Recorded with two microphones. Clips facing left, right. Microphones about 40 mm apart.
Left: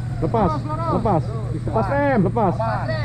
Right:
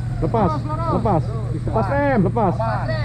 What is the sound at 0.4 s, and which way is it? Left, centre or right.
Speech, right.